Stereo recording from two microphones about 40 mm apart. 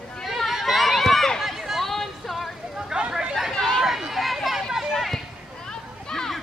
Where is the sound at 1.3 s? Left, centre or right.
Centre.